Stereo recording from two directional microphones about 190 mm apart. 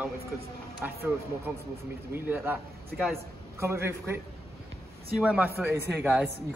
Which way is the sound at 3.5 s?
15° right (ahead or behind).